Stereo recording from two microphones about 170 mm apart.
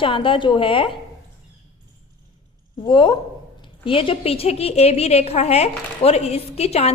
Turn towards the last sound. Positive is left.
turn(degrees=35)  # may be behind; listen again after turning